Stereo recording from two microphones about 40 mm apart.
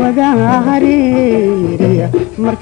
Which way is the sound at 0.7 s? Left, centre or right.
Centre.